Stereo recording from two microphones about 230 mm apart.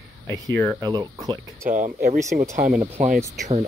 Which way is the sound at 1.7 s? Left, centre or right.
Right.